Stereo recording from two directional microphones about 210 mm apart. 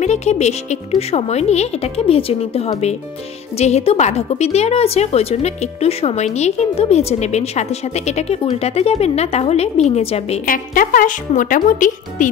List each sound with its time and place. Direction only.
0.0 s a woman's voice: 30° left (ahead or behind)